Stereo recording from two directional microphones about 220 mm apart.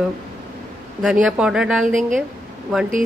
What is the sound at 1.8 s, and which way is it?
Speech, 35° right (ahead or behind).